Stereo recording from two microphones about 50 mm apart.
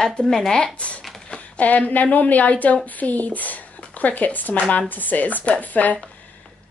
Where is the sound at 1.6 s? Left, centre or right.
Left.